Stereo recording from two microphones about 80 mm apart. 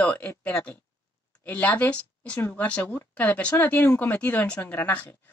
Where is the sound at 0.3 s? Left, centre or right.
Left.